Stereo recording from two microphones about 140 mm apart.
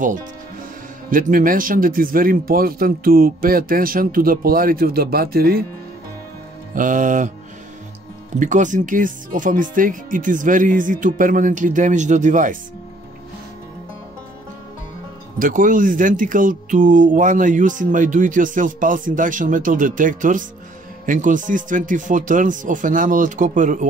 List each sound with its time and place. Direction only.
1.1 s speech: 80° right
6.7 s music: 70° right (ahead or behind)
8.4 s speech: 60° right (ahead or behind)
15.3 s speech: 75° right (ahead or behind)